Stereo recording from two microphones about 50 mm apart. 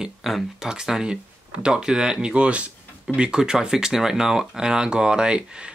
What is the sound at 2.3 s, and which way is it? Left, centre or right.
Speech, right.